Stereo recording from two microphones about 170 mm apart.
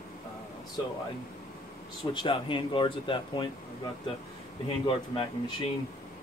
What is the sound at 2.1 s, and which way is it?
Speech, 30° left (ahead or behind).